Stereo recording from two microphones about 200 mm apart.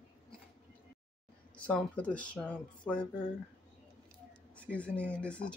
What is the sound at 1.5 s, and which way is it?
Speech, 5° left (ahead or behind).